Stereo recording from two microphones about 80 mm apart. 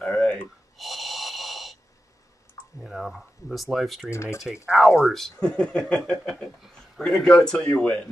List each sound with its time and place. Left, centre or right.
0.0 s a sound: centre
0.7 s snort: centre
2.8 s speech: centre
4.1 s speech: left
4.6 s speech: centre
5.4 s speech: centre